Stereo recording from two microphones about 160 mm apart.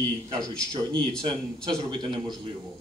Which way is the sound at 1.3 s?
25° right (ahead or behind).